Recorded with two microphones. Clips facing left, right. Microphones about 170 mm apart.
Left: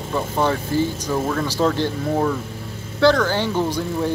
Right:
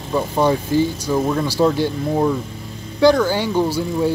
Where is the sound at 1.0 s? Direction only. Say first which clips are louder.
Right 3 dB; 10° right (ahead or behind).